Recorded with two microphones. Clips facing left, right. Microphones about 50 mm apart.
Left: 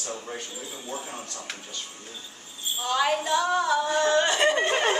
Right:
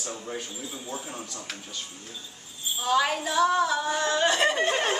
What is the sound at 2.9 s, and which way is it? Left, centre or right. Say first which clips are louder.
Speech: left 1 dB; centre.